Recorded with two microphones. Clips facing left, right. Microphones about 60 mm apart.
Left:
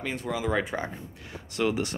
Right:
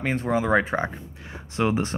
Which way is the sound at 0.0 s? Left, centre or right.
Right.